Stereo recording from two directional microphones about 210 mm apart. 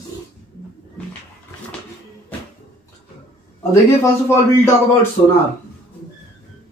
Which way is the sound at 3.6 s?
15° left (ahead or behind).